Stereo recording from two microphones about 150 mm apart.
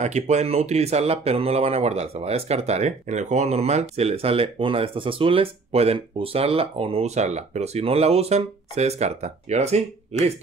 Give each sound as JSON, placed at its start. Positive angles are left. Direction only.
{"t": 0.0, "sound": "speech", "side_deg": -50}